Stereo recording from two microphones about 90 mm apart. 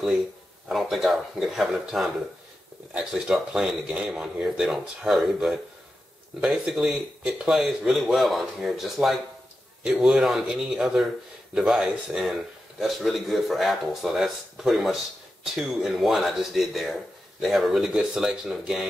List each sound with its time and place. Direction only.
0.7 s a man's voice: centre (ahead or behind)